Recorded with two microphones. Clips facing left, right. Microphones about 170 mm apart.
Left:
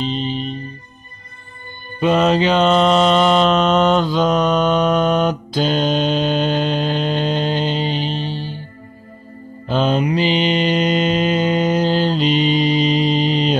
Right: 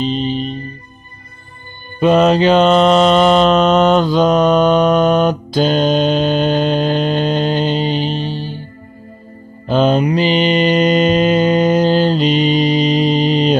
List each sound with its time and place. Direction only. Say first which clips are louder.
2.0 s mantra: right 4 dB; 45° right (ahead or behind)
9.7 s mantra: right 4 dB; 50° right (ahead or behind)